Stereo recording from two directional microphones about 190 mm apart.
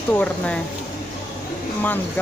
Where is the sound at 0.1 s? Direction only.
5° left (ahead or behind).